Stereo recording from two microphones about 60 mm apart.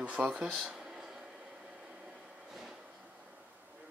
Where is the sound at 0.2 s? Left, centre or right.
Centre.